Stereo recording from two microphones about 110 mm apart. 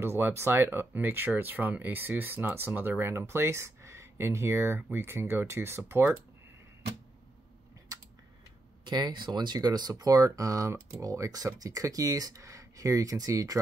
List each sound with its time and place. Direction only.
0.0 s speech: 20° right (ahead or behind)
8.8 s speech: 40° right (ahead or behind)